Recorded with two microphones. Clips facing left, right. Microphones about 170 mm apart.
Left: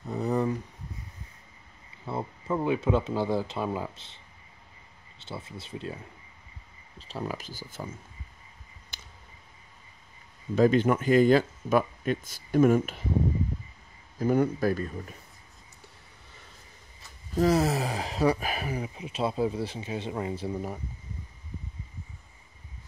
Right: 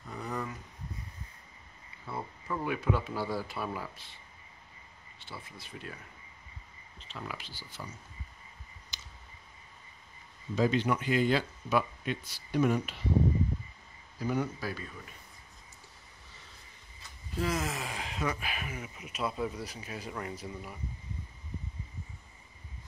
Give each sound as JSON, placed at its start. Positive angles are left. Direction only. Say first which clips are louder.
{"t": 0.1, "sound": "a sound", "louder": "left 10 dB", "side_deg": 25}
{"t": 2.0, "sound": "speech", "louder": "left 6 dB", "side_deg": 25}
{"t": 5.2, "sound": "speech", "louder": "left 7 dB", "side_deg": 25}
{"t": 7.0, "sound": "speech", "louder": "left 8 dB", "side_deg": 40}
{"t": 8.9, "sound": "a sound", "louder": "left 2 dB", "side_deg": 55}
{"t": 10.5, "sound": "speech", "louder": "left 6 dB", "side_deg": 50}
{"t": 14.1, "sound": "speech", "louder": "left 8 dB", "side_deg": 50}
{"t": 17.4, "sound": "speech", "louder": "left 9 dB", "side_deg": 35}